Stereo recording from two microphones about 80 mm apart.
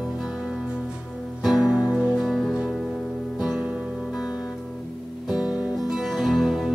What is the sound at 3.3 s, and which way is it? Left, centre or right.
Music, centre.